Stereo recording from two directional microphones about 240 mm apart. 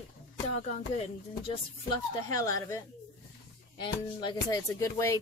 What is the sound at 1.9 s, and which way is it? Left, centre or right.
Speech, centre.